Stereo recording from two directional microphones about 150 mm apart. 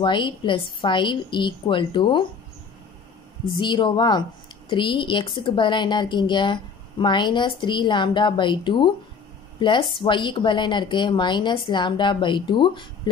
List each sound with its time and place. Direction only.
0.0 s speech: 35° left (ahead or behind)
3.5 s a woman's voice: 35° left (ahead or behind)